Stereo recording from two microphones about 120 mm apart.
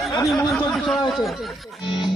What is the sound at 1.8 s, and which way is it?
Music, 40° left (ahead or behind).